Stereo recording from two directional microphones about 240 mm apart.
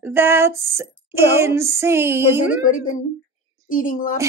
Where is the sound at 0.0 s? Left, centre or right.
Centre.